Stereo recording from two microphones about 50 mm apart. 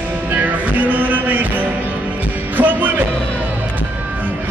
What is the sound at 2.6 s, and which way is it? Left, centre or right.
Music, right.